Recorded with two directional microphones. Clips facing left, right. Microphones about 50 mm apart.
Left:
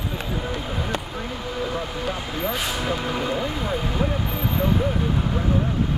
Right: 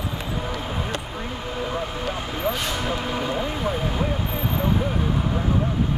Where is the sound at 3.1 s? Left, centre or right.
Right.